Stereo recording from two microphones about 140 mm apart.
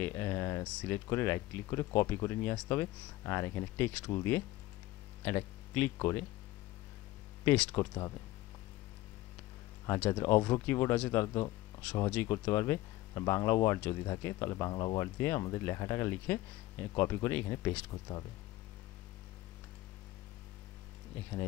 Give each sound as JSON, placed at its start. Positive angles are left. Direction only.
{"t": 0.0, "sound": "a sound", "side_deg": 20}
{"t": 0.7, "sound": "speech", "side_deg": 15}
{"t": 7.4, "sound": "speech", "side_deg": 10}
{"t": 9.8, "sound": "speech", "side_deg": 10}